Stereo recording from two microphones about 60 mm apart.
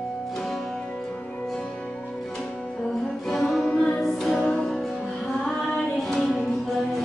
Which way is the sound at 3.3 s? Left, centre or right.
Centre.